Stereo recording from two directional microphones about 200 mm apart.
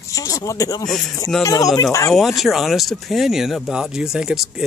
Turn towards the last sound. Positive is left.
turn(degrees=0)  # may be behind; listen again after turning